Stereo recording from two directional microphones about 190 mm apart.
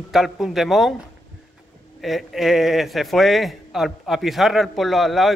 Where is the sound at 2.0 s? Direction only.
Centre (ahead or behind).